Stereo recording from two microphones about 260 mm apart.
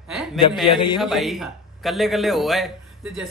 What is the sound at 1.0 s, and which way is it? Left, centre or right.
A man's voice, centre.